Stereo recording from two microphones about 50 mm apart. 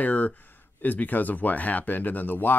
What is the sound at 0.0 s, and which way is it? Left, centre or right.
Speech, left.